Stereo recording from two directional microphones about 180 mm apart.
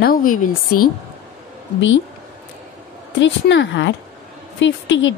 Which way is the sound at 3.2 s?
90° left.